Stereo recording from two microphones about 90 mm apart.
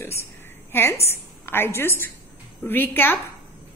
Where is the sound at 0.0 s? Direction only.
30° left (ahead or behind).